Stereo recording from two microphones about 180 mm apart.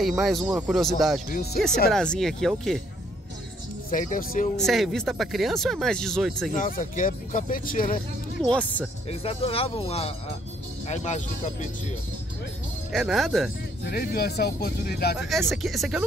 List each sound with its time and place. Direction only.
0.0 s speech: centre (ahead or behind)
1.3 s speech: 60° left (ahead or behind)
1.9 s speech: centre (ahead or behind)
3.9 s speech: 50° left (ahead or behind)
4.6 s speech: centre (ahead or behind)
6.5 s speech: 45° left (ahead or behind)
8.4 s speech: 5° left (ahead or behind)
9.2 s speech: 35° left (ahead or behind)
12.9 s speech: centre (ahead or behind)
13.8 s speech: 60° left (ahead or behind)
15.1 s speech: centre (ahead or behind)